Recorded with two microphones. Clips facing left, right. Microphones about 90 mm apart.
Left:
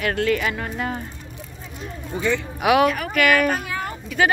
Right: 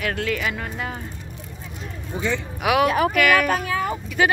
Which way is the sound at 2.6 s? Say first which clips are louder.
Even; centre (ahead or behind).